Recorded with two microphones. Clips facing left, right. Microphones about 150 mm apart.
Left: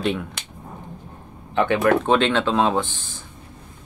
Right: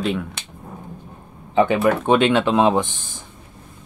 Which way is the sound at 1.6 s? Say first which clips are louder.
Right 1 dB; 5° right (ahead or behind).